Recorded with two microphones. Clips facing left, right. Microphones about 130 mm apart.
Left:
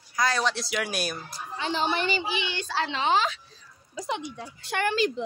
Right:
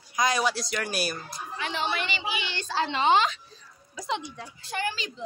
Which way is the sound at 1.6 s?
35° left (ahead or behind).